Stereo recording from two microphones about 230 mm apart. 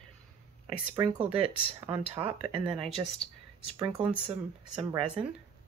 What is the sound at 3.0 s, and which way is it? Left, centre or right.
Speech, centre.